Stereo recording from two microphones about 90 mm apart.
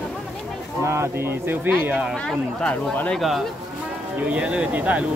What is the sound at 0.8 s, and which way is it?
Speech, 30° right (ahead or behind).